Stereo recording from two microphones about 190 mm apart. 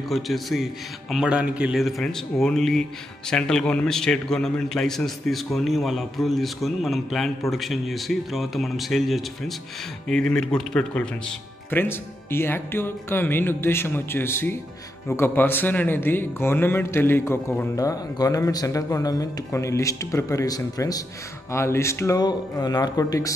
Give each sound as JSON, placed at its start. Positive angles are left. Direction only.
{"t": 0.1, "sound": "a man's voice", "side_deg": 0}